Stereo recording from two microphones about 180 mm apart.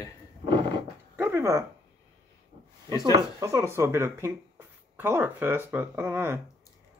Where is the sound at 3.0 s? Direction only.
20° right (ahead or behind).